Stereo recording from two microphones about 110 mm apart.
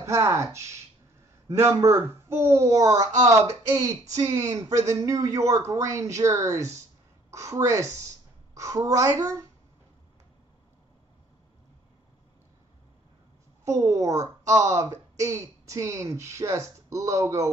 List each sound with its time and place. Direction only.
0.0 s speech: 25° right (ahead or behind)
13.7 s speech: 30° right (ahead or behind)